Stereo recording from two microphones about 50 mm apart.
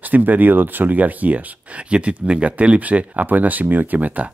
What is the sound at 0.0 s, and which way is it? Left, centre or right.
Speech, right.